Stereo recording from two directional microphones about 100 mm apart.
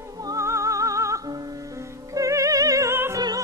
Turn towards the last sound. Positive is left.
turn(degrees=-25)  # may be behind; listen again after turning